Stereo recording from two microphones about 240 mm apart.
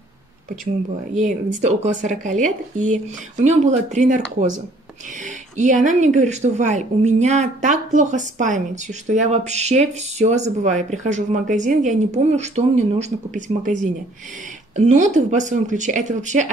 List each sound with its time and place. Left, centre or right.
1.1 s speech: right
5.2 s speech: right